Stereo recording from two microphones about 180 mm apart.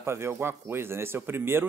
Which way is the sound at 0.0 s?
15° right (ahead or behind).